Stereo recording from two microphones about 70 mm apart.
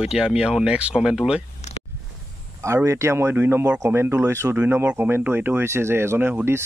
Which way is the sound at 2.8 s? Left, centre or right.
Right.